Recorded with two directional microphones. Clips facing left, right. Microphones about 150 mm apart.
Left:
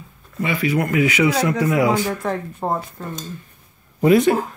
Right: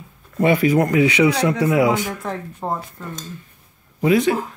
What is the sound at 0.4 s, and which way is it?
Speech, 45° right (ahead or behind).